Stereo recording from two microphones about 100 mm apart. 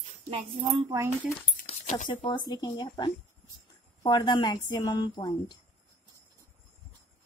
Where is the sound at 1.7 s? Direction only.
90° left.